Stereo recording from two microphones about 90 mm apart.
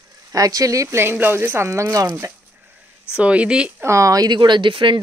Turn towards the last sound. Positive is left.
turn(degrees=-65)  # may be behind; listen again after turning